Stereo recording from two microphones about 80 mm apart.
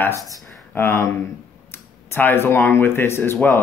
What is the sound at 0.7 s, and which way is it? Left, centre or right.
Speech, left.